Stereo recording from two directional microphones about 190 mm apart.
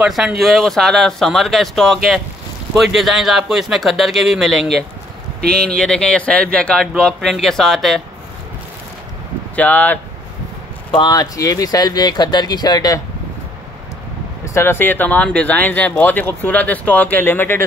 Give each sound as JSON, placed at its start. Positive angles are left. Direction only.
{"t": 0.0, "sound": "speech", "side_deg": -5}
{"t": 9.6, "sound": "speech", "side_deg": 10}
{"t": 10.9, "sound": "speech", "side_deg": 20}
{"t": 14.4, "sound": "speech", "side_deg": 15}